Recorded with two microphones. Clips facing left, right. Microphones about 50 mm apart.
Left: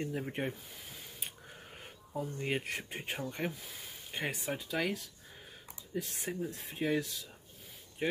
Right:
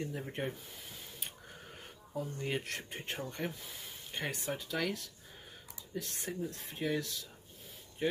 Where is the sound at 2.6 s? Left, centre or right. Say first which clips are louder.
Left 2 dB; centre.